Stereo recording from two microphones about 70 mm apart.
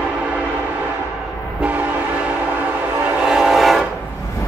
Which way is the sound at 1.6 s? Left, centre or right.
Right.